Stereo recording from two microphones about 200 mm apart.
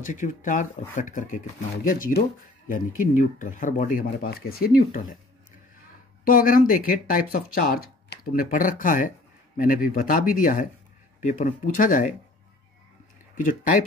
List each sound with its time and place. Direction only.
0.0 s speech: 40° left (ahead or behind)
6.2 s speech: 45° left (ahead or behind)